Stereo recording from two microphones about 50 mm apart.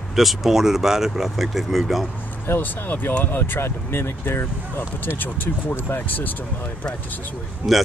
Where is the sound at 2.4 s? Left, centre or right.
Left.